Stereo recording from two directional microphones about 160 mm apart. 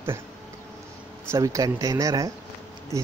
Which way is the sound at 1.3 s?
20° right (ahead or behind).